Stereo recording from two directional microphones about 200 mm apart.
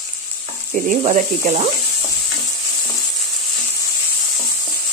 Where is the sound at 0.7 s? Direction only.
40° right (ahead or behind).